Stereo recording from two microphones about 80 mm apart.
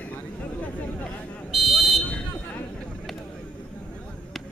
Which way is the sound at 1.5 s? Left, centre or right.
Centre.